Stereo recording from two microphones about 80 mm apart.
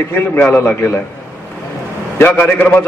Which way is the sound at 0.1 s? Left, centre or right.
Left.